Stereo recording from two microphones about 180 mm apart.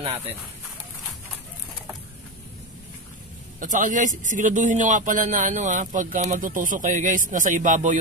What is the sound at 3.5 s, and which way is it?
A man's voice, 45° right (ahead or behind).